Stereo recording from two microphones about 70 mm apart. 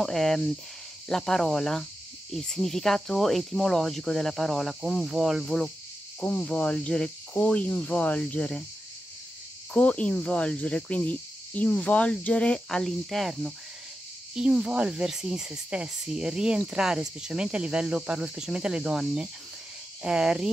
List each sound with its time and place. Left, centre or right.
0.0 s speech: centre
1.0 s cricket: centre
2.3 s speech: centre
6.4 s cricket: centre
9.8 s cricket: centre
14.3 s speech: centre